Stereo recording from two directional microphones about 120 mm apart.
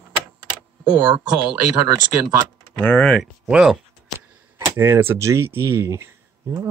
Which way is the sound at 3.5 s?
5° right (ahead or behind).